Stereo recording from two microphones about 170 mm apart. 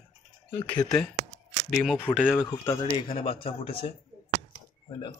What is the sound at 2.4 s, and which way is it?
Speech, 20° left (ahead or behind).